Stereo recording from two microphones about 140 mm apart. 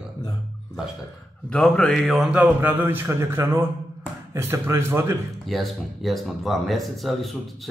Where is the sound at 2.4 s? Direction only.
15° right (ahead or behind).